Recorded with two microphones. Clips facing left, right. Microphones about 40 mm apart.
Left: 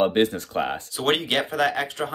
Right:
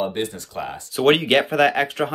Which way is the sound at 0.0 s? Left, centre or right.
Left.